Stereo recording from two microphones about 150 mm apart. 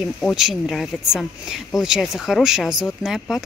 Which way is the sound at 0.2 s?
Centre (ahead or behind).